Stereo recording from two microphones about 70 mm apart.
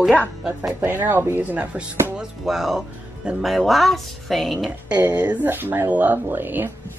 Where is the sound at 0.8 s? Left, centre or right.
Right.